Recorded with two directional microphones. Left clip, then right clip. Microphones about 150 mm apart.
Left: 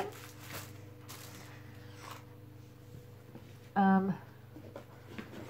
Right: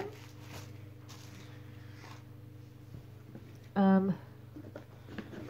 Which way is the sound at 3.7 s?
5° right (ahead or behind).